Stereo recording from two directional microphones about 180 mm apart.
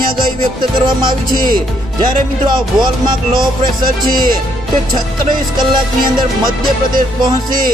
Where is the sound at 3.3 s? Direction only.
50° right (ahead or behind).